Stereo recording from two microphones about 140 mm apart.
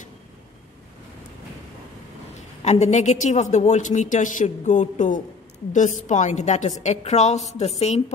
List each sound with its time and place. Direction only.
2.6 s a woman's voice: 55° left (ahead or behind)